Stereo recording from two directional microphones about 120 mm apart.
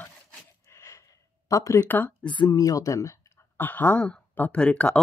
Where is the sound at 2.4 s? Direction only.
30° left (ahead or behind); by 4.9 s 10° left (ahead or behind).